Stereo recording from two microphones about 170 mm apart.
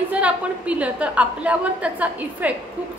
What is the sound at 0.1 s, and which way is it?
A woman's voice, 10° right (ahead or behind).